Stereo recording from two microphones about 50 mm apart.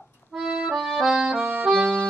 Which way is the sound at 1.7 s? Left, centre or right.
Centre.